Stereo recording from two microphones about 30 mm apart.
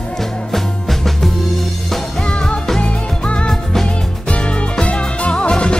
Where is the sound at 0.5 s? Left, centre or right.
Centre.